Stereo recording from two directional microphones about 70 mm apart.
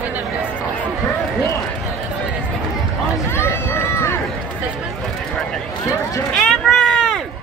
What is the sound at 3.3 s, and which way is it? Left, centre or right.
Run, left.